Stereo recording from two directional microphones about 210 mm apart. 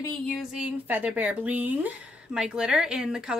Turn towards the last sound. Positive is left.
turn(degrees=-5)  # may be behind; listen again after turning